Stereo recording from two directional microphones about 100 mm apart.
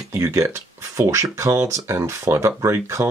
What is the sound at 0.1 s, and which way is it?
Speech, 30° right (ahead or behind).